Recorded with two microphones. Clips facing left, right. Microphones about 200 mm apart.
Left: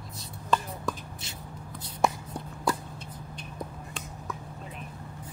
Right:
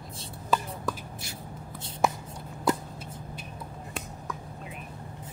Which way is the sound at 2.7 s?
20° right (ahead or behind).